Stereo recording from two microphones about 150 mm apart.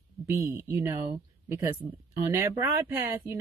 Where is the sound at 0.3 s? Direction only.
15° right (ahead or behind).